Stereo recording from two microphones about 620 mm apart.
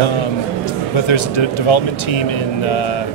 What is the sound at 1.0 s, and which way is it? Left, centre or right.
Speech, left.